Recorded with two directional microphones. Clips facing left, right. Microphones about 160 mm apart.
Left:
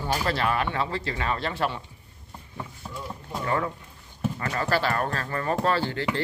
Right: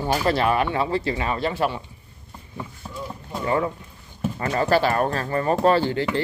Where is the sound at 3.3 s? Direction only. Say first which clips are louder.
Right 4 dB; 15° right (ahead or behind).